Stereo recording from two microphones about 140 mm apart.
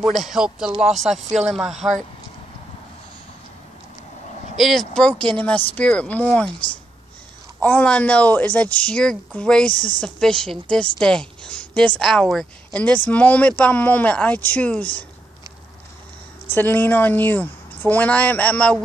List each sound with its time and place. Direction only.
0.0 s speech: centre (ahead or behind)
1.1 s speech: 55° right (ahead or behind)
1.5 s speech: centre (ahead or behind)
4.6 s a woman's voice: centre (ahead or behind)
7.6 s a woman's voice: 10° left (ahead or behind)
16.5 s a woman's voice: 15° left (ahead or behind)